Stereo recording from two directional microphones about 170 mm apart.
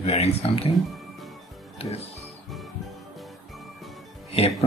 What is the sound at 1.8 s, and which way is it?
Speech, 35° left (ahead or behind).